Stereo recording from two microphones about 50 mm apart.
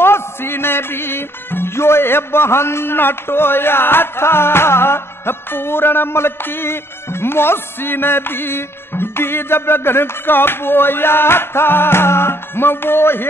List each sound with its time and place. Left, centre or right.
0.0 s music: left